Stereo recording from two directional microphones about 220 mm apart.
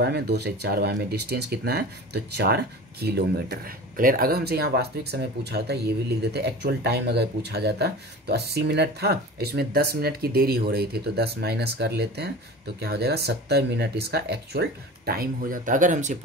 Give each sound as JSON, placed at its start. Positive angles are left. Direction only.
{"t": 0.0, "sound": "speech", "side_deg": -50}